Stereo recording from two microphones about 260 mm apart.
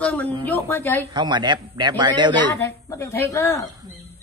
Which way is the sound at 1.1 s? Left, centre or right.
Centre.